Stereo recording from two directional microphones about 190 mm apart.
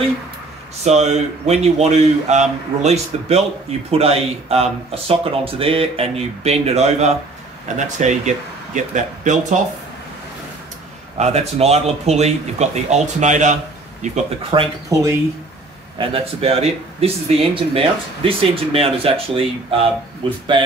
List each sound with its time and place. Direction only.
0.8 s speech: 35° right (ahead or behind)
11.1 s speech: 35° right (ahead or behind)
14.1 s speech: 25° right (ahead or behind)
16.0 s speech: 30° right (ahead or behind)